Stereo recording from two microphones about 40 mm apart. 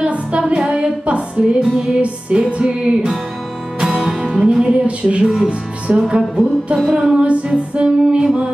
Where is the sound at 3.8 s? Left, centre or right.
Centre.